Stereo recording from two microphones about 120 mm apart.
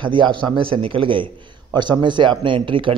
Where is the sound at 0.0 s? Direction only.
40° right (ahead or behind).